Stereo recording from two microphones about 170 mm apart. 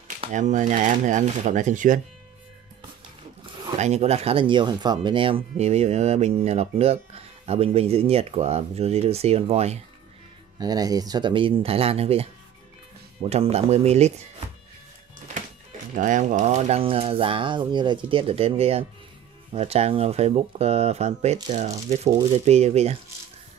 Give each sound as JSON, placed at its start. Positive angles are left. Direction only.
{"t": 0.3, "sound": "speech", "side_deg": -45}
{"t": 3.7, "sound": "speech", "side_deg": -40}
{"t": 10.6, "sound": "speech", "side_deg": -20}
{"t": 15.9, "sound": "speech", "side_deg": -50}